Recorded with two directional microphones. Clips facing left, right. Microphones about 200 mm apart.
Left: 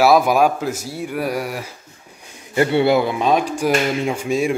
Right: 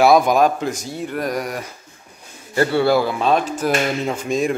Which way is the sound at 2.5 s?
20° left (ahead or behind).